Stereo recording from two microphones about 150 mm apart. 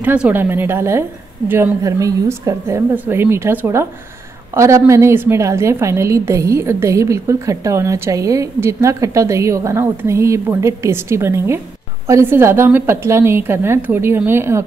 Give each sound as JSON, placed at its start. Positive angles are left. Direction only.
{"t": 0.0, "sound": "a woman's voice", "side_deg": -10}